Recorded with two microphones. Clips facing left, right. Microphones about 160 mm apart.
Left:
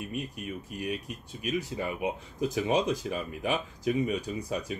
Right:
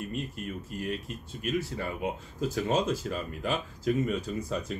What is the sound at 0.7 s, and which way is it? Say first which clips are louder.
Speech: even; 15° left (ahead or behind).